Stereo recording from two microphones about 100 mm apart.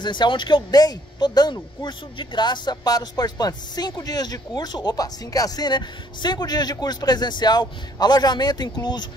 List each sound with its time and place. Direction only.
0.0 s speech: 50° left (ahead or behind)